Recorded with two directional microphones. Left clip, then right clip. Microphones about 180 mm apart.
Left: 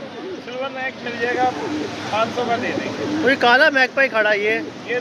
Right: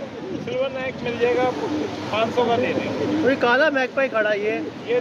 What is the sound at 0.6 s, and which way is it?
Speech, 40° right (ahead or behind).